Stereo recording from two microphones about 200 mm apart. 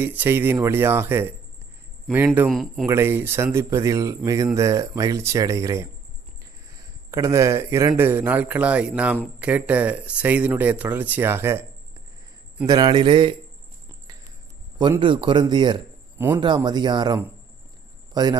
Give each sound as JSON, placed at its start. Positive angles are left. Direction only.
{"t": 0.0, "sound": "speech", "side_deg": -10}
{"t": 2.5, "sound": "speech", "side_deg": 0}
{"t": 2.9, "sound": "speech", "side_deg": -10}
{"t": 7.1, "sound": "speech", "side_deg": -15}
{"t": 12.6, "sound": "speech", "side_deg": -20}
{"t": 14.8, "sound": "a man's voice", "side_deg": -25}